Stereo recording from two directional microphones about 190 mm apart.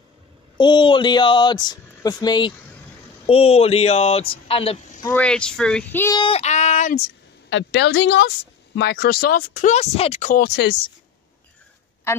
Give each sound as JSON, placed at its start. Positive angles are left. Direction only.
{"t": 0.6, "sound": "speech", "side_deg": 25}
{"t": 3.3, "sound": "speech", "side_deg": 30}
{"t": 5.1, "sound": "speech", "side_deg": 5}
{"t": 6.1, "sound": "a sound", "side_deg": 30}
{"t": 7.4, "sound": "a woman's voice", "side_deg": 75}
{"t": 8.7, "sound": "speech", "side_deg": 55}
{"t": 10.4, "sound": "speech", "side_deg": 60}